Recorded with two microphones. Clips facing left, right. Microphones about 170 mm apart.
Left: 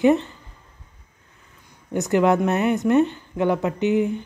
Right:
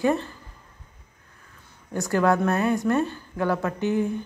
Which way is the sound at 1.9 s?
20° left (ahead or behind).